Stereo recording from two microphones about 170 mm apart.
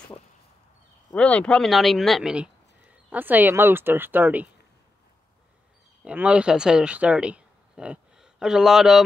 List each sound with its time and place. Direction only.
1.1 s speech: 5° left (ahead or behind); by 4.5 s 10° right (ahead or behind)
6.0 s speech: 5° right (ahead or behind)